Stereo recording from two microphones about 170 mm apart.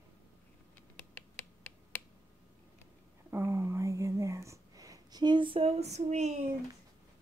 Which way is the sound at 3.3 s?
15° right (ahead or behind).